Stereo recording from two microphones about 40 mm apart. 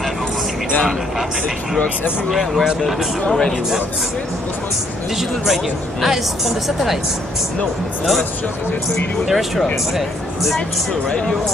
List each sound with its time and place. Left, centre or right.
3.3 s speech: centre
5.5 s a woman's voice: centre
9.3 s a woman's voice: centre
11.1 s speech: centre